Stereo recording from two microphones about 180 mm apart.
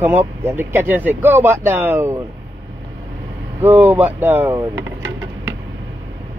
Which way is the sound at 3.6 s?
10° right (ahead or behind).